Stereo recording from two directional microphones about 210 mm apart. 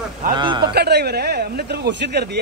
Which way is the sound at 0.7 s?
50° right (ahead or behind).